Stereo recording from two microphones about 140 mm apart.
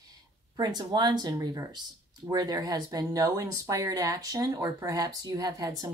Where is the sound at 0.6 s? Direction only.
30° right (ahead or behind).